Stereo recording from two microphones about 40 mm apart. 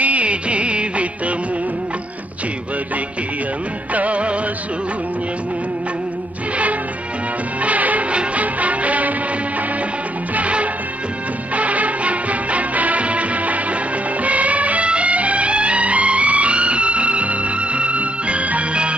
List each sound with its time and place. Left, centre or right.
0.0 s music: right
3.9 s music: right
7.6 s music: right
10.3 s music: right